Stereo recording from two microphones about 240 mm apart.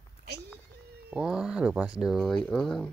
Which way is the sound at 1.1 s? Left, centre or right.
Centre.